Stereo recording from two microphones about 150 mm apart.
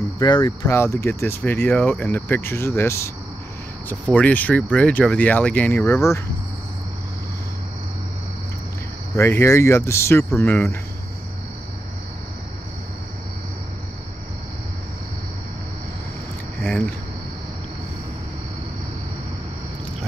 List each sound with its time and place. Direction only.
0.2 s speech: 30° left (ahead or behind)
0.5 s speech: 20° left (ahead or behind)
9.1 s speech: 15° left (ahead or behind)